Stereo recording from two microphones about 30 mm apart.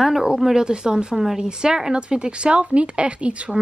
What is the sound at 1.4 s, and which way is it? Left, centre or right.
Speech, right.